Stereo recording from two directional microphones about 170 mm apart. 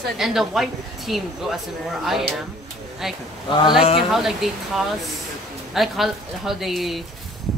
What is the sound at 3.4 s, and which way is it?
Speech, 25° left (ahead or behind).